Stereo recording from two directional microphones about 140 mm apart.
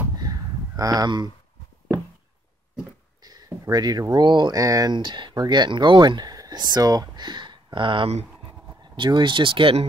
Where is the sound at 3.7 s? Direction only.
25° right (ahead or behind).